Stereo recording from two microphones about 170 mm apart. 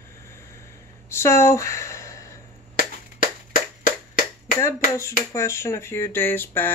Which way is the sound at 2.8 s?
50° left (ahead or behind).